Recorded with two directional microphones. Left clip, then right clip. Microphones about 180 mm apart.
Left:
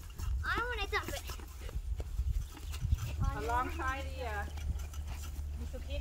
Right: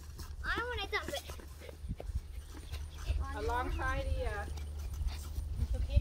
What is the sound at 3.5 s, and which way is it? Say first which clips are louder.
Speech: left 2 dB; 85° left.